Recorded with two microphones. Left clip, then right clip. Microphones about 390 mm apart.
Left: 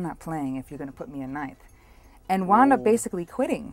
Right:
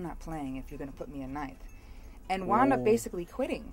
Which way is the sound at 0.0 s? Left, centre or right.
Left.